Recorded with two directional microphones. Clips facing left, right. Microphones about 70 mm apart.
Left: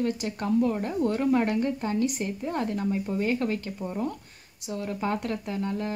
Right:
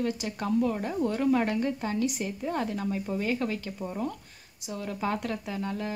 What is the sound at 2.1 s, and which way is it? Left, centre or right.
Speech, centre.